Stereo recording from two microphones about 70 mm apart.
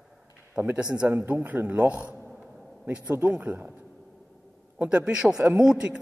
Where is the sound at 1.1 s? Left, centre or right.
Right.